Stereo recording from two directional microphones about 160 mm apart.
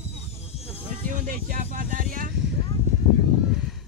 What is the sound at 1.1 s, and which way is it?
Speech, 55° right (ahead or behind).